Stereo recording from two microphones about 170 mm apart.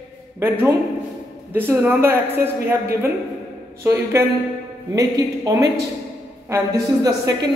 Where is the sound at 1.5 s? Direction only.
10° right (ahead or behind).